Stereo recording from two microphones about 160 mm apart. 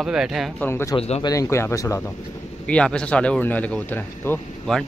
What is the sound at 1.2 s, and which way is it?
Speech, 20° left (ahead or behind).